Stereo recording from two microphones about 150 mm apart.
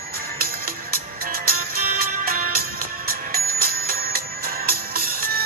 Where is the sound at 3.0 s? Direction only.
85° right.